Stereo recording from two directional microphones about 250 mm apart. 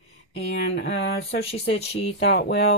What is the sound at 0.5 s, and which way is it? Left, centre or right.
Speech, left.